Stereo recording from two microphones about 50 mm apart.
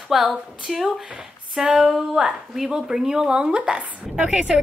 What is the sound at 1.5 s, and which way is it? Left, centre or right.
Female singing, centre.